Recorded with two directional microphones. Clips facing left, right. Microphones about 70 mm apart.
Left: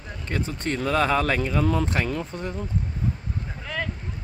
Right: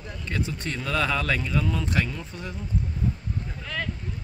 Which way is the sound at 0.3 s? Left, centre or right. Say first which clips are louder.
Left 3 dB; left.